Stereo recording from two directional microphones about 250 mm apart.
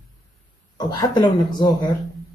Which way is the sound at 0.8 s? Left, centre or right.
Centre.